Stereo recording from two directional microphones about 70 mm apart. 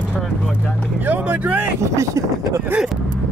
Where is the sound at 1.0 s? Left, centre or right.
Right.